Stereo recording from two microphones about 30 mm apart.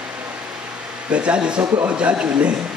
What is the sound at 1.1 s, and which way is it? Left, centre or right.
Speech, right.